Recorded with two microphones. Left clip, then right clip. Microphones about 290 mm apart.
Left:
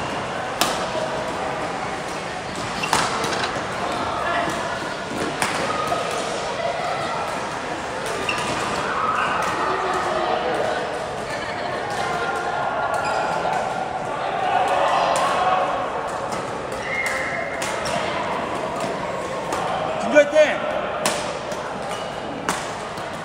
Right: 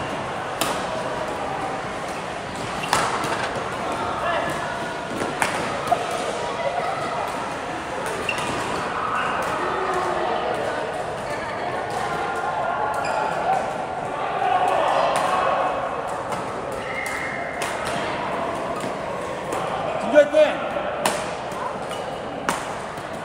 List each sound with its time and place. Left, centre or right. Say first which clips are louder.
20.2 s basketball bounce: even; left